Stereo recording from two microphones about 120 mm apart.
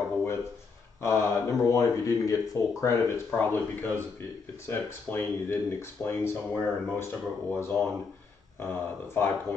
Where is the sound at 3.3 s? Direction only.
15° left (ahead or behind).